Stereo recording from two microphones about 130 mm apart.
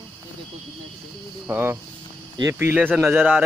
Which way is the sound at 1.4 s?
15° right (ahead or behind).